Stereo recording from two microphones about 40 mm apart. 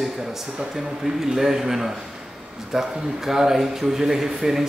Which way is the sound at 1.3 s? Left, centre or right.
Centre.